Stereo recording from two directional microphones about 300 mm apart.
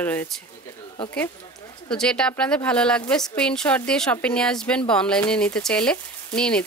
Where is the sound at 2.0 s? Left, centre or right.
Centre.